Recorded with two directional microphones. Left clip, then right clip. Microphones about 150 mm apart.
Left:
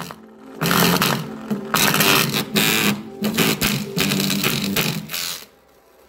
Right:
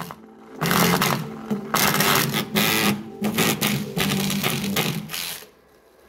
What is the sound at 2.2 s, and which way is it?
Printer, centre (ahead or behind).